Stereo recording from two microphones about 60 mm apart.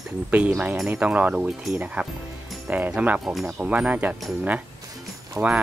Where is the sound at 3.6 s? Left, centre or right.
Right.